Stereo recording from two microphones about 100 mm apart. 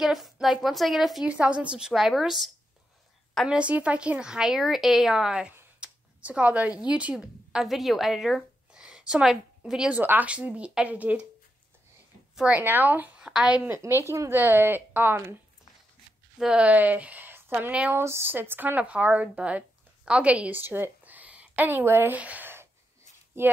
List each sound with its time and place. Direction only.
0.0 s a woman's voice: 5° right (ahead or behind)
1.3 s a woman's voice: 10° right (ahead or behind)
3.4 s a woman's voice: 10° right (ahead or behind)
5.8 s a sound: 10° right (ahead or behind)
6.9 s a woman's voice: 15° right (ahead or behind)
12.5 s a woman's voice: 20° right (ahead or behind)
13.7 s a woman's voice: 25° right (ahead or behind)
16.3 s a woman's voice: 10° right (ahead or behind); by 23.5 s 25° right (ahead or behind)